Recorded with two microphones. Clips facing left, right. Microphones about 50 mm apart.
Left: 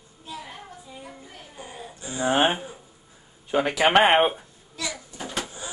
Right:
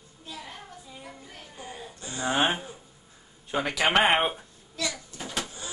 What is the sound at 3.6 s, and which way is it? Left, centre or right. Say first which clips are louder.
Speech: left 4 dB; centre.